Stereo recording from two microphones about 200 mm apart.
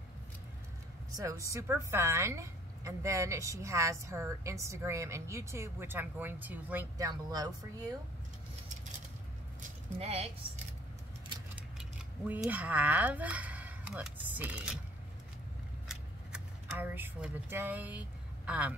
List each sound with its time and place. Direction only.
1.1 s a woman's voice: 15° right (ahead or behind)
9.6 s speech: 30° right (ahead or behind)
12.3 s speech: 5° right (ahead or behind)
15.9 s a sound: 5° right (ahead or behind)